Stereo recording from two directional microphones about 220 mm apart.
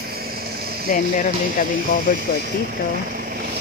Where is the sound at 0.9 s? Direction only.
35° left (ahead or behind).